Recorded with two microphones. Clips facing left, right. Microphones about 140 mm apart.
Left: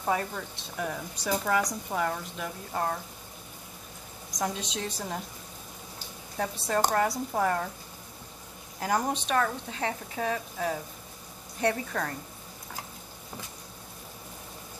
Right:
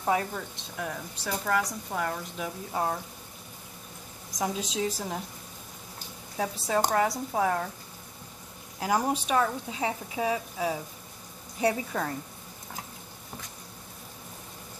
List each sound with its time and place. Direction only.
0.0 s speech: 5° right (ahead or behind)
1.1 s a woman's voice: 15° left (ahead or behind)
2.0 s speech: centre (ahead or behind)
4.4 s speech: 5° right (ahead or behind)
6.3 s speech: centre (ahead or behind)
8.7 s speech: 5° right (ahead or behind)